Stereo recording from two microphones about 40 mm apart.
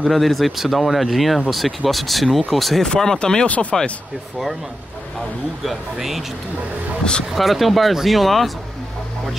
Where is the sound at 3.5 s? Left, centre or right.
Left.